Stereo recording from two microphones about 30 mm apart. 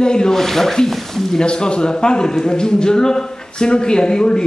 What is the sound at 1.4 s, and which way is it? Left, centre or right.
Speech, left.